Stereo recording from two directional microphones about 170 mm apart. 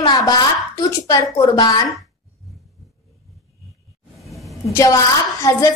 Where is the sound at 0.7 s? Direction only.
20° left (ahead or behind).